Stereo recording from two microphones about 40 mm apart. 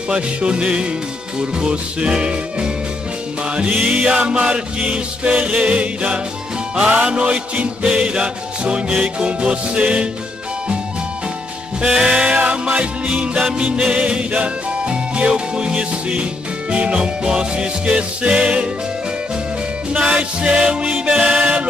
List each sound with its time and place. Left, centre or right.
0.1 s music: right
6.7 s music: centre
11.8 s music: right
19.9 s music: right